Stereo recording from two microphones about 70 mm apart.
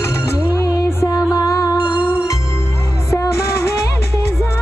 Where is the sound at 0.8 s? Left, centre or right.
Left.